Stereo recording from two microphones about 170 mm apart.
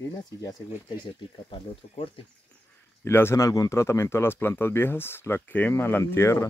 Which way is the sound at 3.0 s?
15° left (ahead or behind).